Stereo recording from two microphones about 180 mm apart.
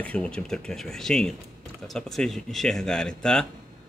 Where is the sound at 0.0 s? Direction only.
5° left (ahead or behind).